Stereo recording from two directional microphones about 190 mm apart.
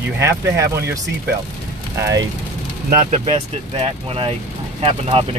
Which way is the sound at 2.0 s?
15° right (ahead or behind).